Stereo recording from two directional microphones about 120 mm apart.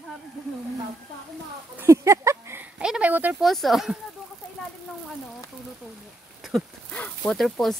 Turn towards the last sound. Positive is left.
turn(degrees=0)  # may be behind; listen again after turning